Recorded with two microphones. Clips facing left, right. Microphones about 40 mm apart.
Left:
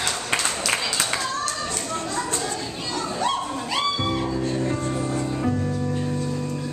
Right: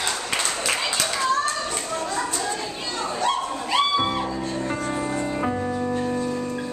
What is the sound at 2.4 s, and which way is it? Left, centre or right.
Children playing, centre.